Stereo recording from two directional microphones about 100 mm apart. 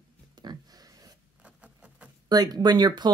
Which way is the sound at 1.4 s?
10° right (ahead or behind).